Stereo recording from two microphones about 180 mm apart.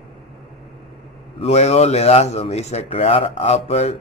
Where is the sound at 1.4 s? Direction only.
35° left (ahead or behind).